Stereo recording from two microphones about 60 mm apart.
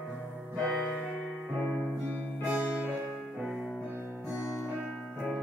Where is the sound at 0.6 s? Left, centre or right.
Left.